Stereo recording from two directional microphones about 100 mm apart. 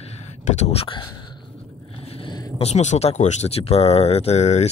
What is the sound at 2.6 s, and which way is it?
Speech, 90° left.